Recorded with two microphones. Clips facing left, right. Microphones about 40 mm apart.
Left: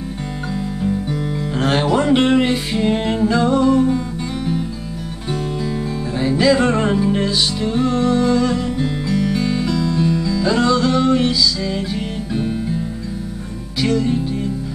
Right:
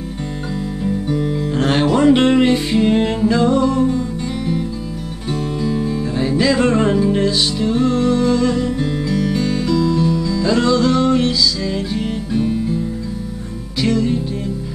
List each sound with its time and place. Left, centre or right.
0.8 s music: centre
5.3 s music: centre
13.7 s music: centre